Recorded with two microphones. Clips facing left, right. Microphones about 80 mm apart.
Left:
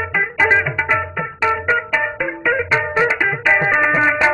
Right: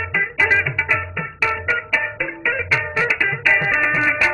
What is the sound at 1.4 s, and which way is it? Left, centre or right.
Music, left.